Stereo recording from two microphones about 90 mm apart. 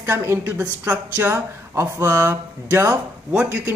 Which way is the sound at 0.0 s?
25° right (ahead or behind).